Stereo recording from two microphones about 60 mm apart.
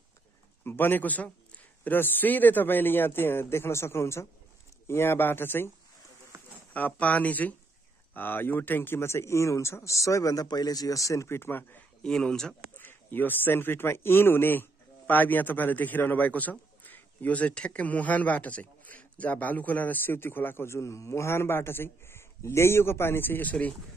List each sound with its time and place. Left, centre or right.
0.7 s speech: left
6.7 s speech: left
11.2 s speech: left
12.0 s speech: centre
12.7 s speech: left